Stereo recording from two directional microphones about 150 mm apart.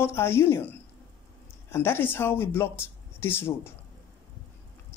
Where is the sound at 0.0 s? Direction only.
15° left (ahead or behind).